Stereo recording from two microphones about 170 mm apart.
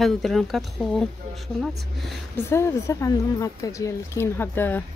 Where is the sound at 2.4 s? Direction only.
15° left (ahead or behind).